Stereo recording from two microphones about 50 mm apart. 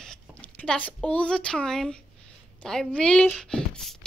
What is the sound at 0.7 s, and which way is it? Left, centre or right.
A woman's voice, left.